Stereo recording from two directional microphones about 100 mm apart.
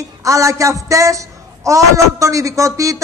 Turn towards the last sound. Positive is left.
turn(degrees=-30)  # may be behind; listen again after turning